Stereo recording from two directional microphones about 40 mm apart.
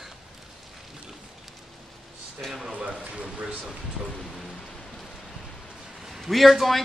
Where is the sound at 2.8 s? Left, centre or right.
Right.